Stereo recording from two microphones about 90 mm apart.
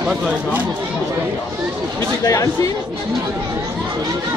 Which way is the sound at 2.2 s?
40° left (ahead or behind).